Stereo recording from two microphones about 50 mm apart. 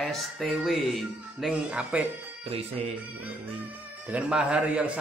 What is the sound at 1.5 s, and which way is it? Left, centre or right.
Speech, right.